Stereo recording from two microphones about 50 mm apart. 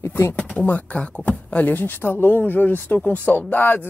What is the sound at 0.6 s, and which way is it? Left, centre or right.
Speech, left.